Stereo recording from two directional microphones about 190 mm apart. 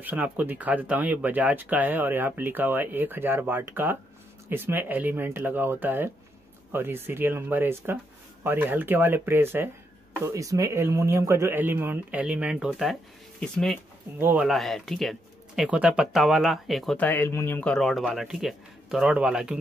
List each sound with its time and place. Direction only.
0.0 s speech: 10° right (ahead or behind)